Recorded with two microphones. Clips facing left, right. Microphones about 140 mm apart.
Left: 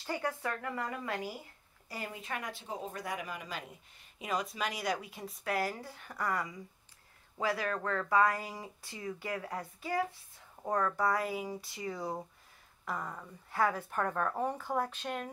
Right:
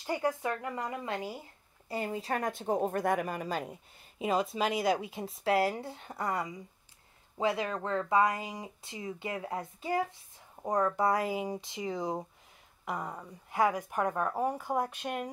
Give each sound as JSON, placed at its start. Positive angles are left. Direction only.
{"t": 0.0, "sound": "speech", "side_deg": -15}
{"t": 4.2, "sound": "a woman's voice", "side_deg": -30}